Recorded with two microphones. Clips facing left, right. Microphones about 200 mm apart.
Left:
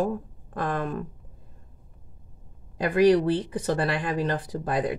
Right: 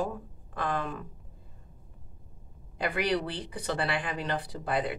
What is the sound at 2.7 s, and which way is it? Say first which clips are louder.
Speech: left 10 dB; 45° left (ahead or behind).